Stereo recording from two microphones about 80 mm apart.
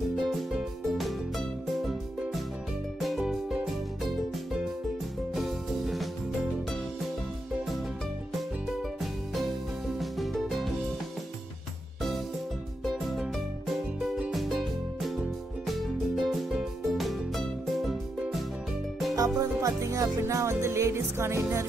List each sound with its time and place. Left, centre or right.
0.3 s music: centre
3.0 s music: centre
5.3 s music: centre
9.9 s music: centre
12.8 s music: centre
14.3 s music: centre
19.1 s music: right